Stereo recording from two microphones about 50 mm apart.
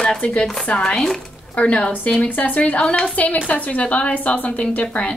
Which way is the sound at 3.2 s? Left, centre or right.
Left.